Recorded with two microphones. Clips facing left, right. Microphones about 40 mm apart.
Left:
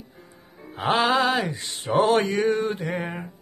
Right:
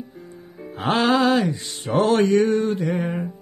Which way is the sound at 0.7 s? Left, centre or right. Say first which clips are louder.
Right 2 dB; centre.